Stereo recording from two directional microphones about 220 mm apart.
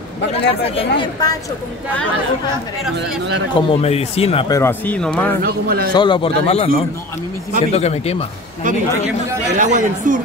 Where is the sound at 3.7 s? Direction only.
25° left (ahead or behind); by 5.3 s 5° left (ahead or behind).